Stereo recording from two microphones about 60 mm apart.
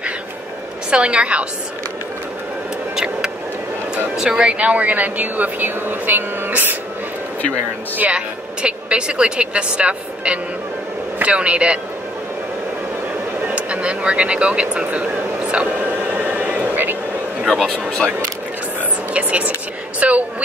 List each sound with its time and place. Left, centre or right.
0.8 s a woman's voice: centre
4.1 s speech: centre; by 6.8 s right
8.6 s a woman's voice: centre
13.5 s speech: right
15.5 s a sound: right
18.8 s whispering: right
20.0 s speech: right